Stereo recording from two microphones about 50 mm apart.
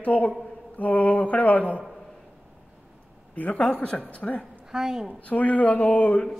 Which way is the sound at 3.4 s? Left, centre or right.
Left.